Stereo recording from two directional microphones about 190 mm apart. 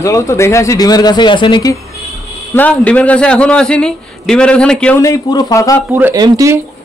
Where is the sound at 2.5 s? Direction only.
10° left (ahead or behind).